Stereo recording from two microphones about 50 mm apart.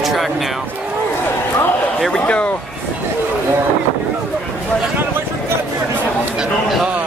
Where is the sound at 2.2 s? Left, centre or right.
Left.